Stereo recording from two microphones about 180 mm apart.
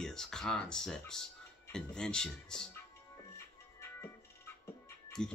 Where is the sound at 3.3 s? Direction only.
15° left (ahead or behind).